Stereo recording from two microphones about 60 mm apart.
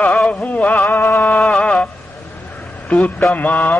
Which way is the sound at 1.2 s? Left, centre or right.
Left.